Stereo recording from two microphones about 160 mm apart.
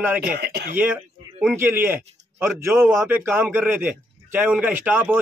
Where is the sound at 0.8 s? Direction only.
10° right (ahead or behind).